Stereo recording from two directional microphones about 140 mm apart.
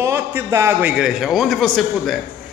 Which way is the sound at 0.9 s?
5° right (ahead or behind).